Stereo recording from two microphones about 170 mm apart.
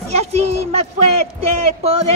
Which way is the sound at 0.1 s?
40° right (ahead or behind).